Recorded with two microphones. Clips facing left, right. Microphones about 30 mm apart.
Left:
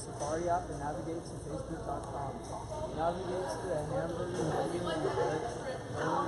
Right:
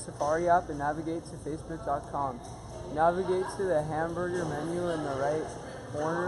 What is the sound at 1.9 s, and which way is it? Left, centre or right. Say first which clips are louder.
Speech: right 9 dB; right.